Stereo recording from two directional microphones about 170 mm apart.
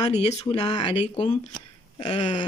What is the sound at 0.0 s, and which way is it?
Speech, 40° left (ahead or behind).